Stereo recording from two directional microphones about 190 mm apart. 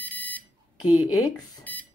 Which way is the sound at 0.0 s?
10° left (ahead or behind).